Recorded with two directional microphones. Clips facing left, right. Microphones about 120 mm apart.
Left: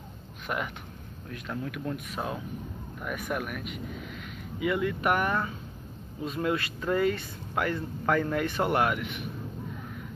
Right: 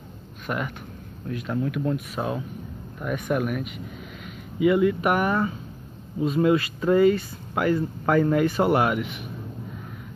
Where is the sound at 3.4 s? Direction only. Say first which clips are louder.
Right 8 dB; 5° right (ahead or behind).